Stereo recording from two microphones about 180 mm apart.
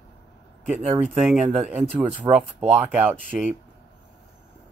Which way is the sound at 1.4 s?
40° right (ahead or behind).